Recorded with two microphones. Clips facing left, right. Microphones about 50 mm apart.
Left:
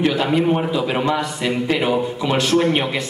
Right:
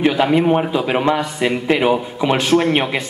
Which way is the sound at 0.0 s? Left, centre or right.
Centre.